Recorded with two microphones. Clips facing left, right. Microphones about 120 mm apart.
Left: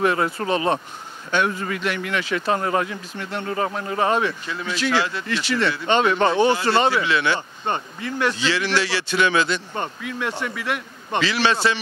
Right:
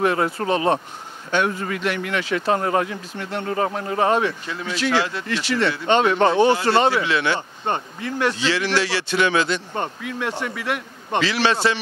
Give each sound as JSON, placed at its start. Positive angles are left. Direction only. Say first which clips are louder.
{"t": 0.0, "sound": "speech", "louder": "right 1 dB", "side_deg": -40}
{"t": 8.4, "sound": "speech", "louder": "right 1 dB", "side_deg": -55}